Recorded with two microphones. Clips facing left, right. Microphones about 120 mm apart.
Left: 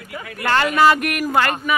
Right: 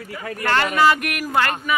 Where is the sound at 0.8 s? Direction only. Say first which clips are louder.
Left 3 dB; 40° left (ahead or behind).